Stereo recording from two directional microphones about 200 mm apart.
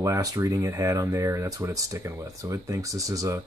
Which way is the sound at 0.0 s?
15° right (ahead or behind).